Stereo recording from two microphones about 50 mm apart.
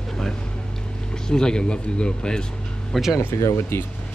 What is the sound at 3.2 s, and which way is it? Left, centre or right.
Speech, left.